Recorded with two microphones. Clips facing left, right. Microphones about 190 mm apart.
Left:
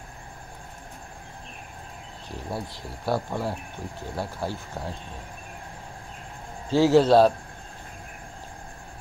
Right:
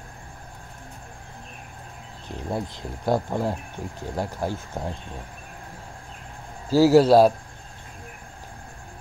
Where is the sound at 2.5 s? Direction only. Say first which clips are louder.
Right 5 dB; 20° right (ahead or behind).